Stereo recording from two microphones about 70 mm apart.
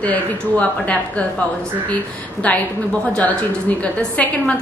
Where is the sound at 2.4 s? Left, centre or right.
Centre.